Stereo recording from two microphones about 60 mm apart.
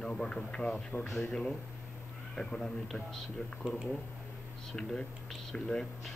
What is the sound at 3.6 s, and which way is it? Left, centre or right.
Speech, centre.